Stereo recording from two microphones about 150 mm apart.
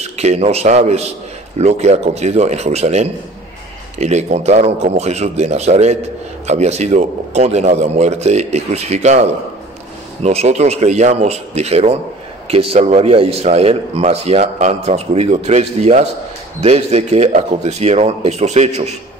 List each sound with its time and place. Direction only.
0.0 s a man's voice: 45° right (ahead or behind)